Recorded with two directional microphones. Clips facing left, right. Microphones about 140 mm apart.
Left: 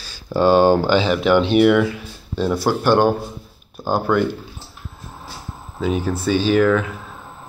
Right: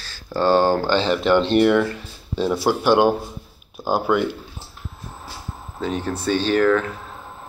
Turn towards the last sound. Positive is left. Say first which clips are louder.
# left 2 dB
turn(degrees=5)  # may be behind; listen again after turning